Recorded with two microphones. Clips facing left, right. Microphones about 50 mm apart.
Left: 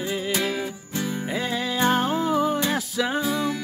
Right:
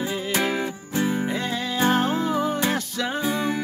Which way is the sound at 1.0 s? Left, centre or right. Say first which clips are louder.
Right 5 dB; right.